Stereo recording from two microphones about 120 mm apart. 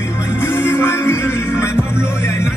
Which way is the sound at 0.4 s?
20° left (ahead or behind).